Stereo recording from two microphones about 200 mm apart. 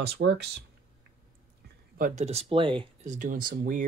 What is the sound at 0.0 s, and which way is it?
Speech, 55° right (ahead or behind).